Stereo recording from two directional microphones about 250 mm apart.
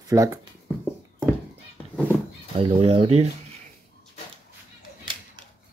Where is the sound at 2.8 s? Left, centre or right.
Right.